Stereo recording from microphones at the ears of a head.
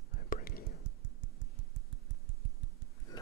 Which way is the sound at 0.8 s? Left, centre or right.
Right.